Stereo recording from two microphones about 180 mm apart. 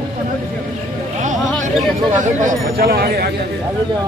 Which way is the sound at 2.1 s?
50° right (ahead or behind).